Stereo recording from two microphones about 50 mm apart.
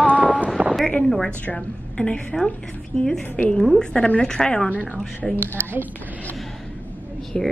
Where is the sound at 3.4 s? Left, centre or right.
Left.